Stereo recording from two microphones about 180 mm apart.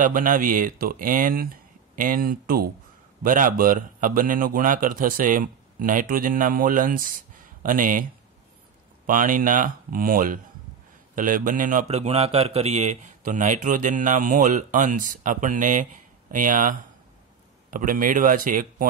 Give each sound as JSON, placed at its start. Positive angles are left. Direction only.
{"t": 0.0, "sound": "a man's voice", "side_deg": -50}
{"t": 9.0, "sound": "a man's voice", "side_deg": -50}